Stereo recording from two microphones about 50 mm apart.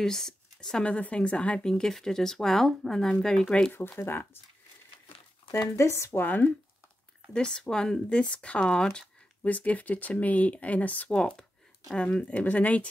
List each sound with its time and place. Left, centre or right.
0.0 s speech: centre
0.8 s speech: left
4.0 s speech: left
5.5 s speech: left
6.2 s speech: left
7.3 s speech: centre
9.5 s speech: left